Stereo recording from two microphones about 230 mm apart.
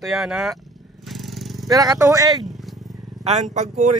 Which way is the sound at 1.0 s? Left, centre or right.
Centre.